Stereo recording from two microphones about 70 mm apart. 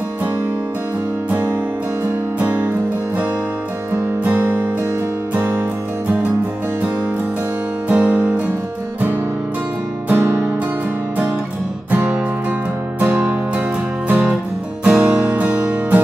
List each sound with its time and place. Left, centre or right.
1.3 s music: right
7.9 s music: right
10.0 s music: right
13.0 s music: centre